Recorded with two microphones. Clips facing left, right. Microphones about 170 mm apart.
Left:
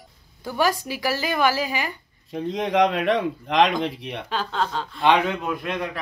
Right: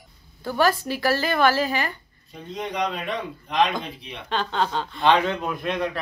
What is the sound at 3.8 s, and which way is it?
Speech, 65° left (ahead or behind).